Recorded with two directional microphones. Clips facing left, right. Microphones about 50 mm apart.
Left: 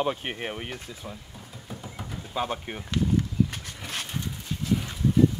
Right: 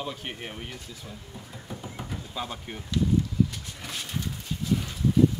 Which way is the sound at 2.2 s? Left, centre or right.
Left.